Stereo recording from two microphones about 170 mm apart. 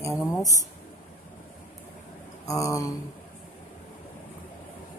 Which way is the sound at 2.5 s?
20° left (ahead or behind).